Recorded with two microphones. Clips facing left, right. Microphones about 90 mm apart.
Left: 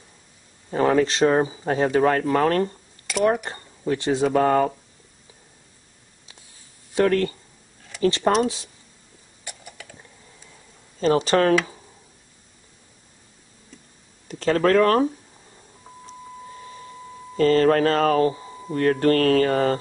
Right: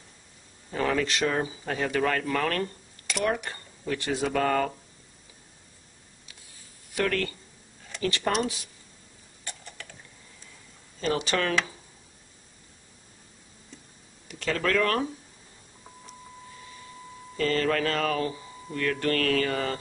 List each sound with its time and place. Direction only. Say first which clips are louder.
0.7 s speech: left 8 dB; 30° left (ahead or behind)
3.1 s speech: left 7 dB; 5° left (ahead or behind)
3.4 s speech: left 7 dB; 30° left (ahead or behind)
6.9 s speech: left 8 dB; 30° left (ahead or behind)
9.4 s a sound: left 2 dB; 10° left (ahead or behind)
11.0 s speech: left 8 dB; 35° left (ahead or behind)
14.2 s speech: left 8 dB; 40° left (ahead or behind)
17.4 s speech: left 9 dB; 35° left (ahead or behind)